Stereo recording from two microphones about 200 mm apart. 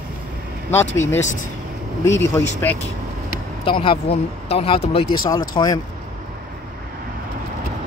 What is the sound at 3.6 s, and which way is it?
Speech, 25° left (ahead or behind).